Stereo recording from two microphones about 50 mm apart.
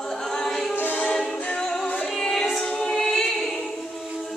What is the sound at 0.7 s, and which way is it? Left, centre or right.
Choir, left.